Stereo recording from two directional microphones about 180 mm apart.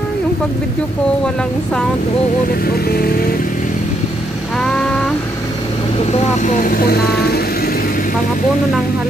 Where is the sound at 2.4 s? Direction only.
55° left (ahead or behind).